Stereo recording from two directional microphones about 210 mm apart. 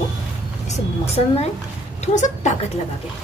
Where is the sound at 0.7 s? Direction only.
30° left (ahead or behind).